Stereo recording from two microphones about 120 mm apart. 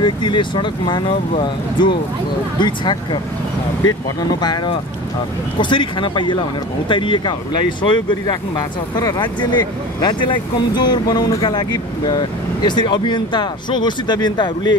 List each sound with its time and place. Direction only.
0.0 s speech: 40° left (ahead or behind)
4.2 s speech: 35° left (ahead or behind)